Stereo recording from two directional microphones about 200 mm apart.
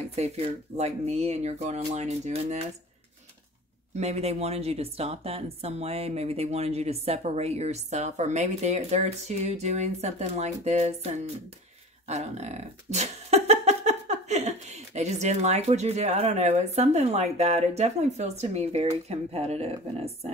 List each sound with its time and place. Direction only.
0.1 s speech: 30° right (ahead or behind)
3.9 s speech: 30° right (ahead or behind)